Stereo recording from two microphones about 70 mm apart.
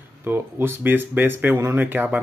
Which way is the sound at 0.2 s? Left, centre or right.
Right.